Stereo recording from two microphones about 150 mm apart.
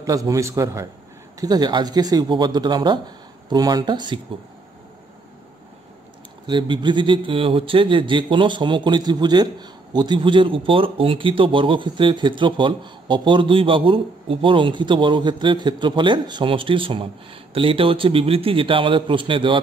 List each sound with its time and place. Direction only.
0.0 s speech: 20° right (ahead or behind)
6.4 s a man's voice: 30° right (ahead or behind)